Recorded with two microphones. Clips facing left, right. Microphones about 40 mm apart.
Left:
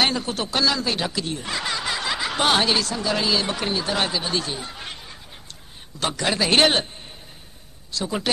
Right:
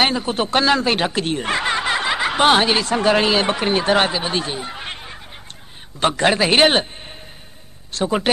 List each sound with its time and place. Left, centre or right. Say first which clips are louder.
0.0 s a man's voice: right 4 dB; right
0.5 s speech: right 6 dB; right
2.9 s speech: right 7 dB; right
4.1 s a man's voice: right 3 dB; right
7.9 s speech: right 6 dB; right